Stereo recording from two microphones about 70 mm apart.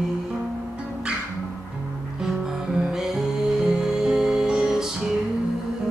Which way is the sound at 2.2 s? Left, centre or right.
Centre.